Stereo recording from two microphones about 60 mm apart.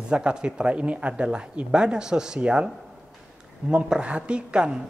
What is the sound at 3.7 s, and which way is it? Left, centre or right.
A man's voice, centre.